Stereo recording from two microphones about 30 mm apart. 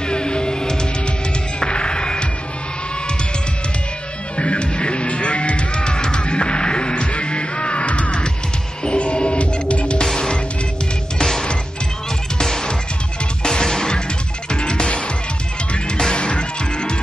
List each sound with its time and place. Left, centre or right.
0.1 s music: left
4.4 s music: left
12.4 s music: left
16.0 s music: left